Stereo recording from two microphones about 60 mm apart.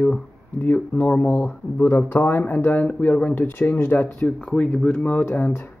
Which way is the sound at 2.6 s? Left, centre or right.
Left.